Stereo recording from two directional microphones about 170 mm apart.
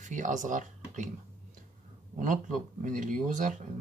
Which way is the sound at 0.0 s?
45° right (ahead or behind).